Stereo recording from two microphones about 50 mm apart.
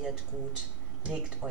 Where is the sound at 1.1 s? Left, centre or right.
Centre.